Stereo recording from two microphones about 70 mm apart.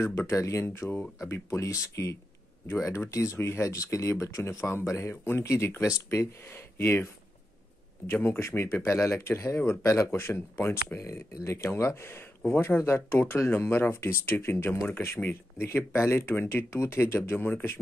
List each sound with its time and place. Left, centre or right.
0.0 s speech: left
8.1 s speech: left